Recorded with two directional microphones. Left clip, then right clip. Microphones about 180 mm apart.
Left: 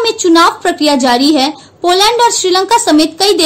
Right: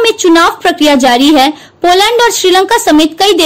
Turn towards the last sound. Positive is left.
turn(degrees=-30)  # may be behind; listen again after turning